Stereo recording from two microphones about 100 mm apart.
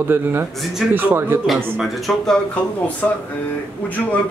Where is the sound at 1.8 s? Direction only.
Centre (ahead or behind).